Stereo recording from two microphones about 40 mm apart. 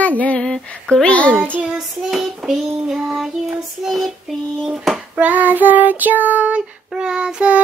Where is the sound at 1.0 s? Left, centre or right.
Left.